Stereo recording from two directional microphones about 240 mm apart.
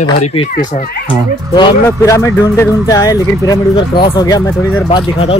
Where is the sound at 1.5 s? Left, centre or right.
Centre.